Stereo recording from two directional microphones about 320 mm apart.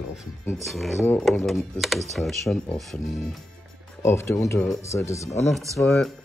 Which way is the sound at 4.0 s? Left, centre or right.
Centre.